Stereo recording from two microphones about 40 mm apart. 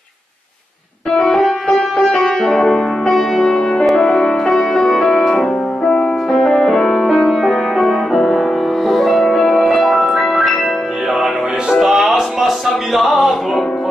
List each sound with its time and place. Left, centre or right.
1.1 s music: centre
7.4 s music: centre
11.7 s music: centre